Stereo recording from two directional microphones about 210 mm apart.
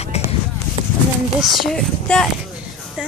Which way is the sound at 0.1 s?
30° left (ahead or behind).